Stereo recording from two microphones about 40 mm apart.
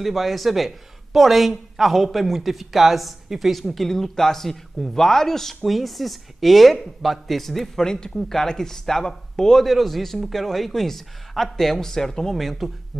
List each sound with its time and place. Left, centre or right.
0.0 s speech: centre
7.8 s speech: centre
9.7 s speech: centre